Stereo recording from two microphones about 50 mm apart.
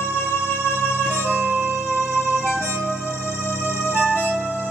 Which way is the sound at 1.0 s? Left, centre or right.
Right.